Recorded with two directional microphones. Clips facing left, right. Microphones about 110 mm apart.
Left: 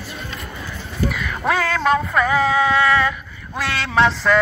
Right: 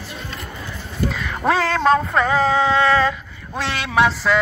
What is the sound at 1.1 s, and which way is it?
Music, 30° right (ahead or behind).